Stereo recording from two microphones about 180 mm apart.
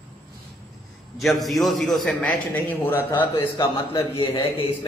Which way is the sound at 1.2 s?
Centre (ahead or behind).